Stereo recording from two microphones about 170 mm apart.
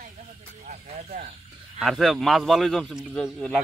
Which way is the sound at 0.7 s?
45° right (ahead or behind).